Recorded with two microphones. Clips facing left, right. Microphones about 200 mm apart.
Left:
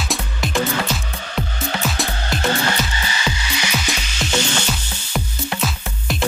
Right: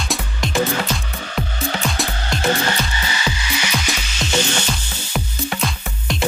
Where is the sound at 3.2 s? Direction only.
10° right (ahead or behind).